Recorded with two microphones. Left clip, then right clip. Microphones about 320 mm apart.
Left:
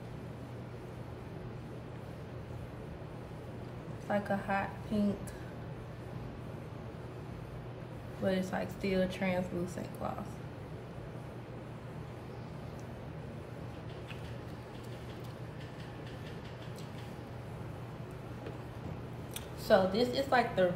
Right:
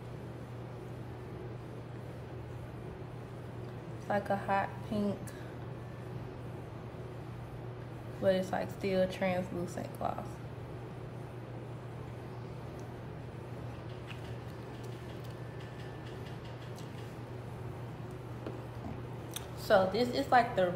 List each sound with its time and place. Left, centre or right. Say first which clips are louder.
4.1 s a woman's voice: right 2 dB; centre
8.3 s a woman's voice: right 4 dB; centre
19.7 s a woman's voice: even; centre